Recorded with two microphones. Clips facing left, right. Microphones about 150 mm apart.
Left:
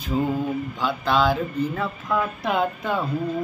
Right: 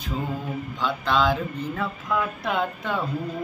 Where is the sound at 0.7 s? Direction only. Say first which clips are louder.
Left 1 dB; 5° left (ahead or behind).